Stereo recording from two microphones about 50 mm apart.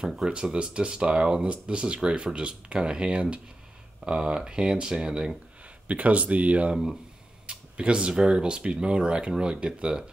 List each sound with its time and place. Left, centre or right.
0.0 s speech: centre
0.3 s speech: centre
5.9 s speech: right